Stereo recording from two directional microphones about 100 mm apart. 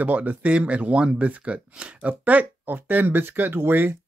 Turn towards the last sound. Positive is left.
turn(degrees=-20)  # may be behind; listen again after turning